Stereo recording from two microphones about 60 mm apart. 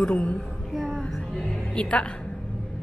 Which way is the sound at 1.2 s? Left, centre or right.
Centre.